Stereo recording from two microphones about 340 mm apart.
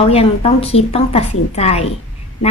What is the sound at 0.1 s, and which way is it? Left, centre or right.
Speech, centre.